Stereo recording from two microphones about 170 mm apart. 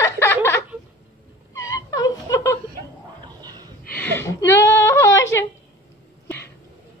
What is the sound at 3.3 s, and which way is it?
Gasp, 25° right (ahead or behind).